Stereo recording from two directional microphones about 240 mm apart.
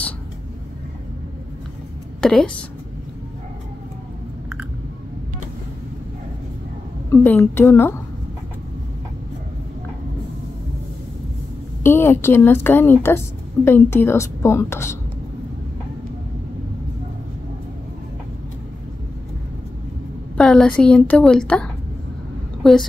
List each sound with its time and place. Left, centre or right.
2.2 s a woman's voice: centre
7.1 s a woman's voice: centre
11.8 s a woman's voice: centre
20.3 s a woman's voice: centre